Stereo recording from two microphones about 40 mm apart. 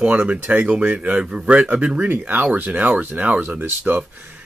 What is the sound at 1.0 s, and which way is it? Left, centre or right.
Speech, right.